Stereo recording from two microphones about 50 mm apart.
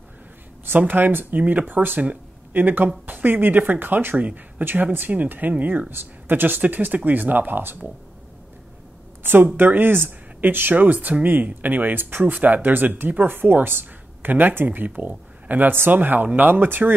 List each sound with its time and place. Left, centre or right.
0.7 s speech: right
4.2 s speech: right
5.9 s speech: right
9.2 s a woman's voice: right